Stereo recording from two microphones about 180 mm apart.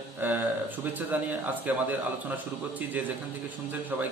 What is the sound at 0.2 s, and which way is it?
A man's voice, 10° right (ahead or behind).